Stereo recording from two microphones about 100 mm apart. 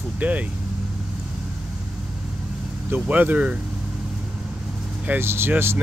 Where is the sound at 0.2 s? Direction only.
15° right (ahead or behind).